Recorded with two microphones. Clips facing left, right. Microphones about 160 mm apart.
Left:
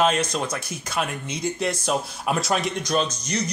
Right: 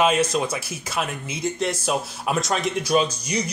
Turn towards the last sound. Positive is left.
turn(degrees=-10)  # may be behind; listen again after turning